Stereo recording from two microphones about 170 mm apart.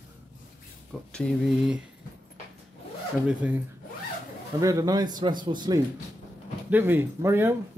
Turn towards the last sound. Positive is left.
turn(degrees=-15)  # may be behind; listen again after turning